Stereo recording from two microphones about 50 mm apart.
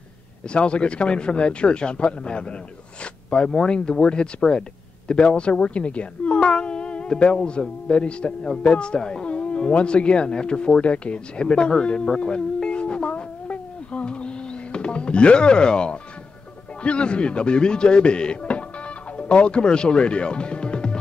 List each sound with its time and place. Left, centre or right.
0.5 s a woman's voice: left
12.6 s music: left
16.8 s a woman's voice: left